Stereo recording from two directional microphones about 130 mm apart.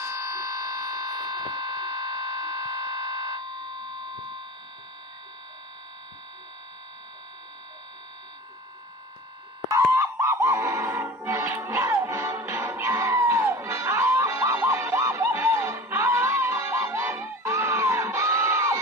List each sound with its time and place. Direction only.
0.0 s a sound: 20° right (ahead or behind)
9.7 s fowl: 20° right (ahead or behind)
11.1 s music: 15° right (ahead or behind)